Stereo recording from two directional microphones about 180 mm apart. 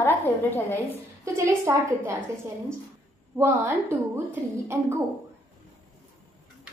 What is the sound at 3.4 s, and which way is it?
A woman's voice, 15° right (ahead or behind).